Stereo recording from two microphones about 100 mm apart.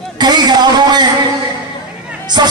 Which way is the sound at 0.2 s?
45° right (ahead or behind).